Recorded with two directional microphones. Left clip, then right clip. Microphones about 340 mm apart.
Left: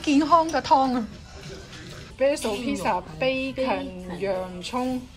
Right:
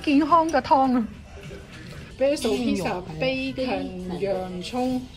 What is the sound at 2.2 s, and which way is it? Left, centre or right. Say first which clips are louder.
Speech: even; centre.